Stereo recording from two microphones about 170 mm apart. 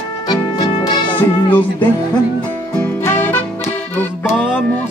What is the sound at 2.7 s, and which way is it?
Music, 10° left (ahead or behind).